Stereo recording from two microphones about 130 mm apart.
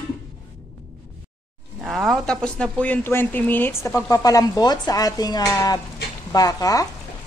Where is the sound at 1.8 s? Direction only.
5° right (ahead or behind).